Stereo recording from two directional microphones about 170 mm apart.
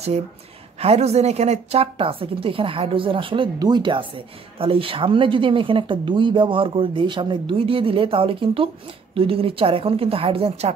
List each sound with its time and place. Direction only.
0.7 s speech: 40° right (ahead or behind)